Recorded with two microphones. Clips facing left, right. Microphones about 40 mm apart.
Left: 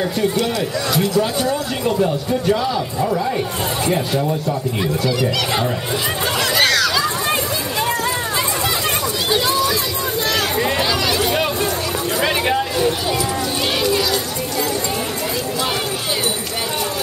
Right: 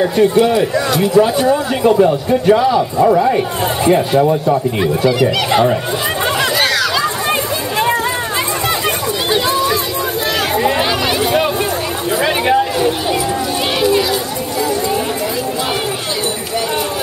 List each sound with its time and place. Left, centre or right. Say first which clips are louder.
0.0 s speech: right 7 dB; centre
6.6 s hubbub: right 2 dB; centre
9.3 s run: right 3 dB; centre
12.2 s a sound: right 5 dB; centre